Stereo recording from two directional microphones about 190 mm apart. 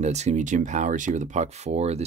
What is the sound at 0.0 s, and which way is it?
Speech, 35° right (ahead or behind).